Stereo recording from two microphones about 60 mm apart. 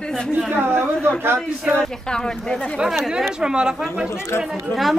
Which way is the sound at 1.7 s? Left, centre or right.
Centre.